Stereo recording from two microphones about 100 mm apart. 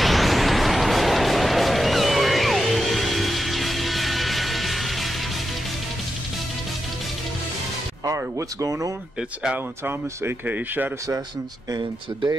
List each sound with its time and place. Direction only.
0.0 s vehicle: centre (ahead or behind)
8.0 s speech: 35° right (ahead or behind)
9.8 s speech: 20° right (ahead or behind)
11.7 s speech: 45° right (ahead or behind)